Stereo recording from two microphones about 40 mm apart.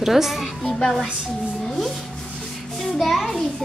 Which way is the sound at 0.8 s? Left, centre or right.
Centre.